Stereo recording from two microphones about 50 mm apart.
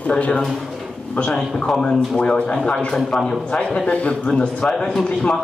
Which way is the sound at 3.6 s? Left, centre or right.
Left.